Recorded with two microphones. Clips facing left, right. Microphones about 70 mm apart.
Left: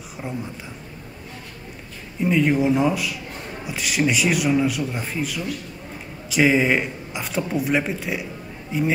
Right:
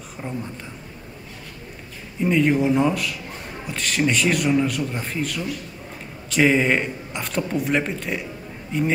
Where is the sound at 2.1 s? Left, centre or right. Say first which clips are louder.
Even; centre.